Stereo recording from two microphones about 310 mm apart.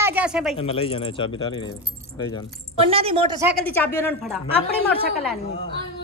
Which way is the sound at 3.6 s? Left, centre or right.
Centre.